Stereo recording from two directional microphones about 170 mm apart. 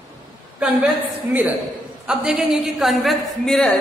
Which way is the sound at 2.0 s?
5° right (ahead or behind).